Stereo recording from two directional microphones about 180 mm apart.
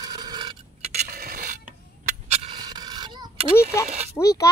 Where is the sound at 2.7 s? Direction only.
25° right (ahead or behind).